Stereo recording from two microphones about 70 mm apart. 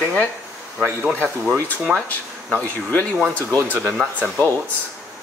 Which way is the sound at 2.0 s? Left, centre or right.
Left.